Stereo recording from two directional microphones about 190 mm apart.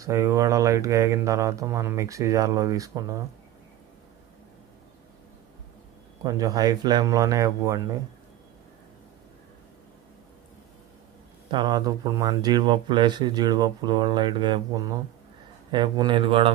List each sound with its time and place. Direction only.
0.0 s speech: 15° right (ahead or behind)
6.2 s speech: 20° right (ahead or behind)
11.5 s speech: 20° right (ahead or behind)